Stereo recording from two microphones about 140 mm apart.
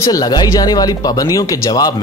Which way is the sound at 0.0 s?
25° left (ahead or behind).